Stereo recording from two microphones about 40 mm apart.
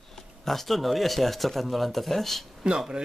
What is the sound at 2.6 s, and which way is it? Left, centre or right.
Speech, right.